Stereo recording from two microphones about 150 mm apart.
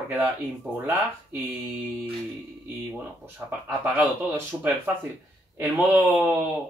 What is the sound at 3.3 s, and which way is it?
Speech, 10° right (ahead or behind).